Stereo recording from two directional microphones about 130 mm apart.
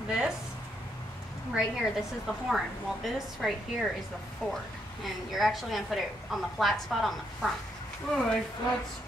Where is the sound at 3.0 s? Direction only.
Centre (ahead or behind).